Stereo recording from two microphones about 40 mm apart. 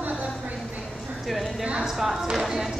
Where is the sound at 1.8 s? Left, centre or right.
Centre.